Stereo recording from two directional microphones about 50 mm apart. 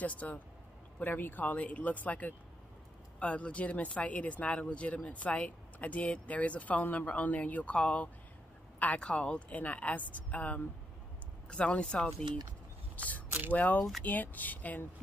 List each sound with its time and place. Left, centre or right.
0.0 s speech: left
12.9 s a sound: left
13.5 s speech: left